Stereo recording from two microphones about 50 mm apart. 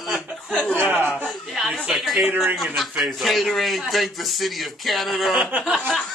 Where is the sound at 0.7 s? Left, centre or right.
Right.